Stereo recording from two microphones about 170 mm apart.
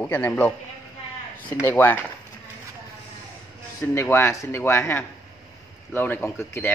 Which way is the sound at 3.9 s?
15° left (ahead or behind).